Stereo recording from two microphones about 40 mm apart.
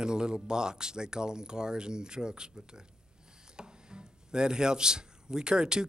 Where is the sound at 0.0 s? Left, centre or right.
Right.